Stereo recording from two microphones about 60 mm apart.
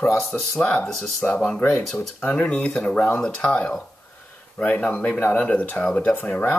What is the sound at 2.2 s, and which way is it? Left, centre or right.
A man's voice, left.